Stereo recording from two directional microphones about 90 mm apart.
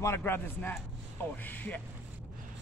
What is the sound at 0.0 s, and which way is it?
A man's voice, 30° left (ahead or behind).